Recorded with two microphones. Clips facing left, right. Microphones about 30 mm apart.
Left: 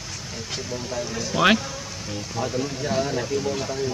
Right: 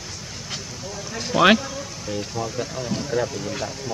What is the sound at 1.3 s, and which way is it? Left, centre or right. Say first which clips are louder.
Speech: right 3 dB; centre.